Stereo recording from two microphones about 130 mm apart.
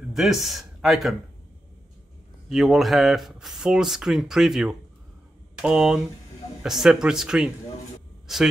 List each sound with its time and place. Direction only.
0.1 s speech: centre (ahead or behind)
2.5 s speech: centre (ahead or behind)